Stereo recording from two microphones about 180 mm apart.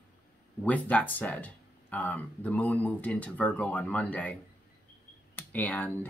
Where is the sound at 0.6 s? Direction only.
10° left (ahead or behind).